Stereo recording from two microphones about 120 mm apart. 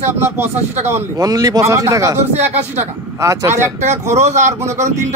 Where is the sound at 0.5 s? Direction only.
70° right (ahead or behind).